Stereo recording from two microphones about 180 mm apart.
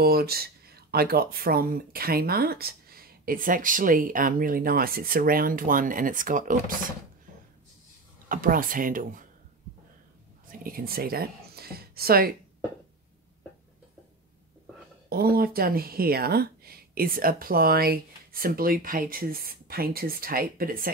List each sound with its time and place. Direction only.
0.0 s speech: 60° right (ahead or behind)
8.3 s speech: 50° right (ahead or behind)
10.6 s speech: 55° right (ahead or behind)
15.0 s speech: 55° right (ahead or behind)